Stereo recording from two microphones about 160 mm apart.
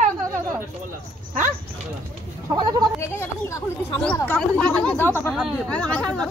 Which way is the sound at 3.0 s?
15° left (ahead or behind).